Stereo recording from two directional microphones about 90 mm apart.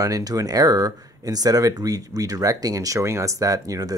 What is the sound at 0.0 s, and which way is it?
Speech, 40° right (ahead or behind).